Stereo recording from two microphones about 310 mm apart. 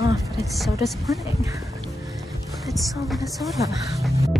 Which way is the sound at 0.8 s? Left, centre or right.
Centre.